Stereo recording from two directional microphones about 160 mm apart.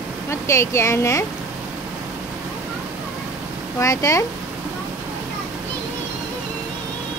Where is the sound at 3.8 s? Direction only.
20° left (ahead or behind).